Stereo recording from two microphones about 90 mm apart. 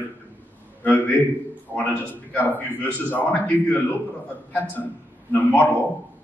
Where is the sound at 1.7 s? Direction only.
25° right (ahead or behind).